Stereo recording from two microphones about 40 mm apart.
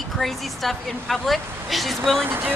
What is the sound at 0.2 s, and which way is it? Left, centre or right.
Speech, centre.